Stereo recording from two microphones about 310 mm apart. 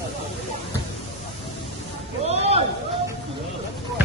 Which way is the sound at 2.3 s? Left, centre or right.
Centre.